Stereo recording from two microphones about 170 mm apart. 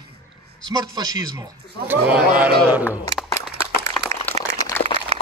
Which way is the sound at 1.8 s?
10° right (ahead or behind).